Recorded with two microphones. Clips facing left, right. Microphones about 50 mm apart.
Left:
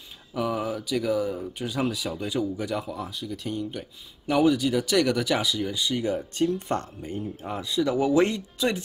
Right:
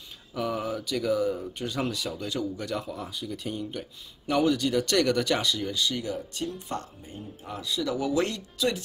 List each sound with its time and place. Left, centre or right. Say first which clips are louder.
0.3 s speech: left 2 dB; centre; by 6.9 s left
7.4 s speech: left 4 dB; left